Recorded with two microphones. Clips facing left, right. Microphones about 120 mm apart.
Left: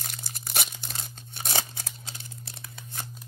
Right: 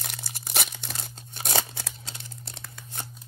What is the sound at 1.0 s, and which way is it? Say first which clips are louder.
Tearing: right 1 dB; 45° right (ahead or behind).